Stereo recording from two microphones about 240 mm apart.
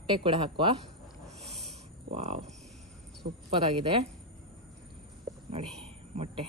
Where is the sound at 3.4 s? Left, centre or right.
Right.